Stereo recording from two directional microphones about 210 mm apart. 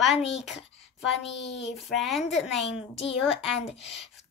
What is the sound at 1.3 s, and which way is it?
Speech, 55° left (ahead or behind).